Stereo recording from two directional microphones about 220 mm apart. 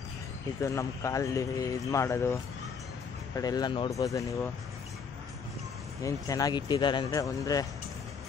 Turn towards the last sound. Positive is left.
turn(degrees=15)  # may be behind; listen again after turning